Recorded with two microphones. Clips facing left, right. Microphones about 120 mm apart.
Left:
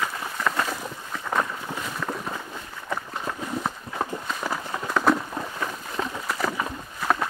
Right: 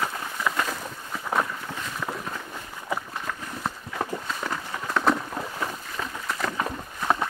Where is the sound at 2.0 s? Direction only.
Centre (ahead or behind).